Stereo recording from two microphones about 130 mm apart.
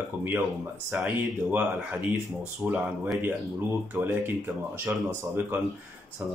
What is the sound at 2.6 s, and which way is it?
Speech, 15° right (ahead or behind).